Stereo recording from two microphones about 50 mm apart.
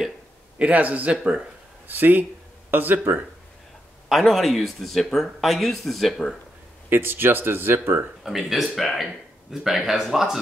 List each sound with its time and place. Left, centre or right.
0.6 s a man's voice: right
4.1 s speech: centre
6.9 s speech: right
8.2 s speech: centre